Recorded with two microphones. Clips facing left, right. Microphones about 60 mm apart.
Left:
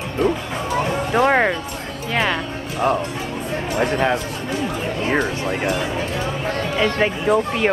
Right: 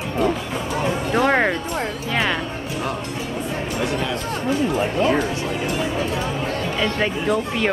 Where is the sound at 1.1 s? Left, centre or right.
Centre.